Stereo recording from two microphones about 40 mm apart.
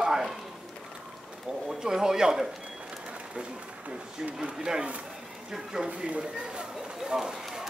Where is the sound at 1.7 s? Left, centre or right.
Centre.